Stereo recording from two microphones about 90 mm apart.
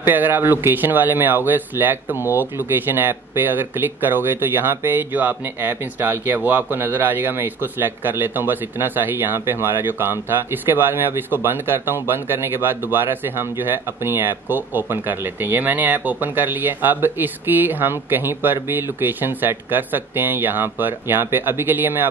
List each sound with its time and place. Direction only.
0.0 s speech: 20° right (ahead or behind)